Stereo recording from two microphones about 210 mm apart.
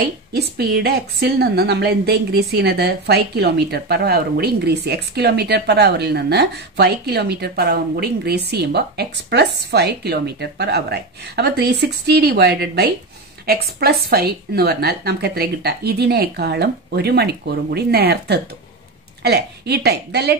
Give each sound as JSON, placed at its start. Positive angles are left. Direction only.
{"t": 0.3, "sound": "a woman's voice", "side_deg": -50}